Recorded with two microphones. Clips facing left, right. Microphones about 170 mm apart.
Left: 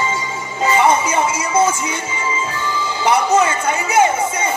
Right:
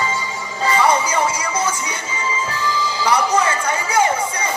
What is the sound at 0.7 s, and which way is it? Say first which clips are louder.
Music: left 2 dB; 25° left (ahead or behind).